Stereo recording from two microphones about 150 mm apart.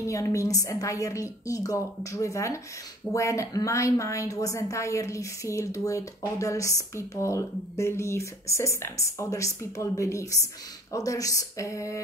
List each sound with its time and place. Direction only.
0.0 s a woman's voice: 20° left (ahead or behind)